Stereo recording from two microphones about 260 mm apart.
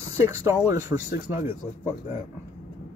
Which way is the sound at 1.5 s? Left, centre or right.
Left.